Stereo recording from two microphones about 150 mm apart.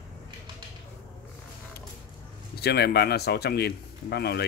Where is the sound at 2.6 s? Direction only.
90° left.